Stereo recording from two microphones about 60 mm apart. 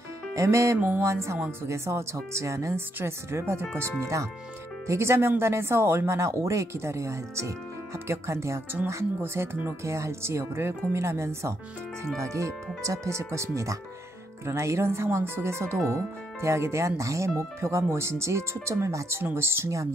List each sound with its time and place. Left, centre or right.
0.3 s music: right
0.7 s music: right
1.0 s speech: right
3.0 s speech: right
4.0 s speech: right
19.1 s speech: right